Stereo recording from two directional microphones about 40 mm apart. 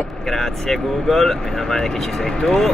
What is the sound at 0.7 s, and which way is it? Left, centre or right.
Speech, centre.